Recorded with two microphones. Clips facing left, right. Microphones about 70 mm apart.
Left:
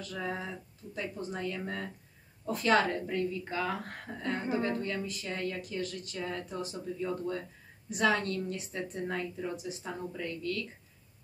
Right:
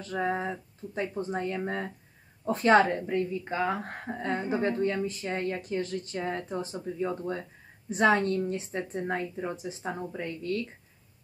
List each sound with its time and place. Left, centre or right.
0.0 s a woman's voice: right